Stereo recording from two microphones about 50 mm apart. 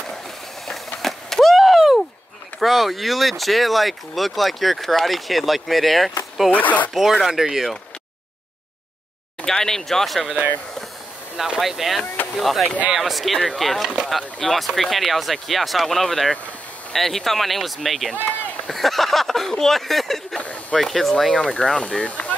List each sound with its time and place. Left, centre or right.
1.0 s a sound: centre
2.6 s speech: centre
6.5 s speech: left
6.9 s speech: centre
9.4 s speech: centre
11.3 s speech: centre
20.3 s speech: left
20.7 s speech: centre
21.5 s speech: centre